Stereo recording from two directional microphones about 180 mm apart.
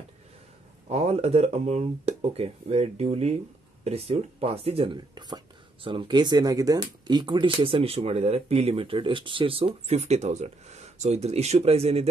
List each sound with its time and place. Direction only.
0.8 s speech: 35° right (ahead or behind)